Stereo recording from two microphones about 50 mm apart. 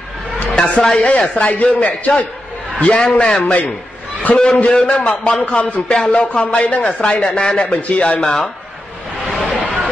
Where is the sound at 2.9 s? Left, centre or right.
Centre.